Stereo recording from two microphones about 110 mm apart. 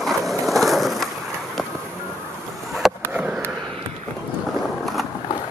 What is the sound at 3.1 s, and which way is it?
Skateboard, 15° right (ahead or behind).